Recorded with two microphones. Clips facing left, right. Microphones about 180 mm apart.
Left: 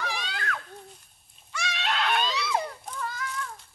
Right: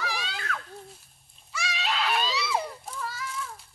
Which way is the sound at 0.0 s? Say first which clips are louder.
Left 1 dB; centre (ahead or behind).